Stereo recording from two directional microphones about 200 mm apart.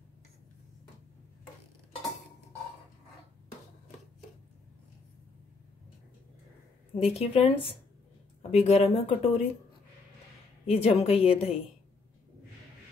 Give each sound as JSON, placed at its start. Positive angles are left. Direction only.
{"t": 7.0, "sound": "speech", "side_deg": 30}
{"t": 10.7, "sound": "speech", "side_deg": 30}